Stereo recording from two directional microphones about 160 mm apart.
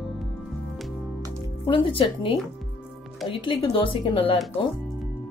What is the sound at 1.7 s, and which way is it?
Speech, 35° left (ahead or behind).